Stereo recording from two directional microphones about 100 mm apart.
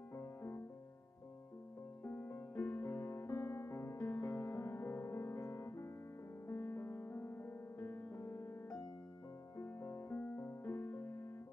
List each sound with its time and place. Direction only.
0.1 s music: 30° left (ahead or behind)
2.0 s music: 25° left (ahead or behind)
2.8 s music: 30° left (ahead or behind)